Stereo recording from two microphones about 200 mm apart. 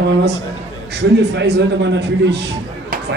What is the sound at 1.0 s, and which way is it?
A man's voice, 60° right (ahead or behind).